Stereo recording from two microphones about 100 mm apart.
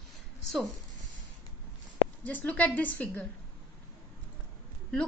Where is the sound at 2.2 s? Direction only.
15° left (ahead or behind).